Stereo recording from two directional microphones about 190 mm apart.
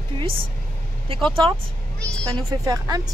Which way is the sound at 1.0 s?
30° right (ahead or behind).